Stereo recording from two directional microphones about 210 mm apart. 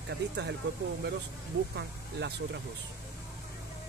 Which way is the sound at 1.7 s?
55° right (ahead or behind).